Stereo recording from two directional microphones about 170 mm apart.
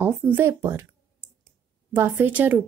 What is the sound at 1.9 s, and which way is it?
Speech, 10° right (ahead or behind).